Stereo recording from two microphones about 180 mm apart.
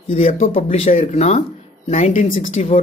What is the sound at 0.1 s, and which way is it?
Speech, 40° left (ahead or behind).